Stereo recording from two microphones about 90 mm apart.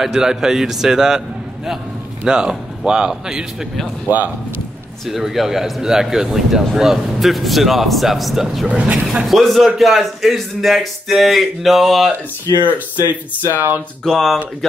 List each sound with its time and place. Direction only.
0.0 s speech: 5° right (ahead or behind)
2.2 s speech: 10° right (ahead or behind)
5.0 s speech: 5° right (ahead or behind)
8.6 s speech: 15° right (ahead or behind)
9.0 s speech: centre (ahead or behind)
13.5 s speech: 20° right (ahead or behind)
14.0 s speech: 5° left (ahead or behind)